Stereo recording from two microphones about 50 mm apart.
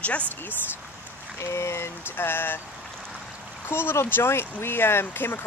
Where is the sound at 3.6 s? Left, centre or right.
Left.